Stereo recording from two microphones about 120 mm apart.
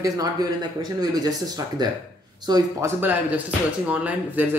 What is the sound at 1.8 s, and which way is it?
Speech, 35° right (ahead or behind).